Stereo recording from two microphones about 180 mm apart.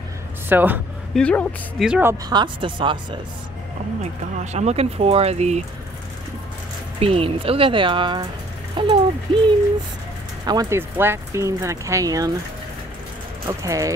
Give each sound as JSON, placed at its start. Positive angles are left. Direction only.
{"t": 0.5, "sound": "speech", "side_deg": -10}
{"t": 1.1, "sound": "a man's voice", "side_deg": 5}
{"t": 1.9, "sound": "speech", "side_deg": -10}
{"t": 2.2, "sound": "speech", "side_deg": -25}
{"t": 4.0, "sound": "speech", "side_deg": -40}
{"t": 7.0, "sound": "speech", "side_deg": -30}
{"t": 10.4, "sound": "speech", "side_deg": -20}
{"t": 13.5, "sound": "speech", "side_deg": -20}